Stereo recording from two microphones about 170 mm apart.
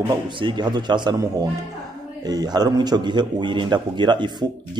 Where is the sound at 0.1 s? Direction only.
30° right (ahead or behind).